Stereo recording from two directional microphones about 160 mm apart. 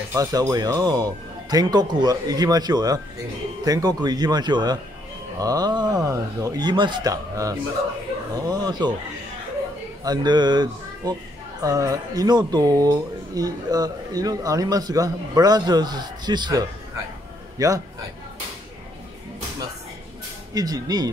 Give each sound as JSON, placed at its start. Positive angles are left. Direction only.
{"t": 0.1, "sound": "speech", "side_deg": -20}
{"t": 10.0, "sound": "speech", "side_deg": -25}
{"t": 20.5, "sound": "speech", "side_deg": -25}